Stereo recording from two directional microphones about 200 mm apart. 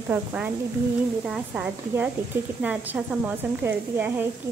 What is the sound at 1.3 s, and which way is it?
Speech, 5° right (ahead or behind).